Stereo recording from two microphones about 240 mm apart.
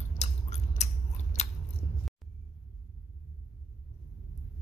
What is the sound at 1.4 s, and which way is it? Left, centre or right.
Biting, left.